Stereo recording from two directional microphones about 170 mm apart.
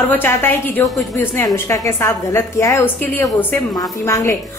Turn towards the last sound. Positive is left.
turn(degrees=15)  # may be behind; listen again after turning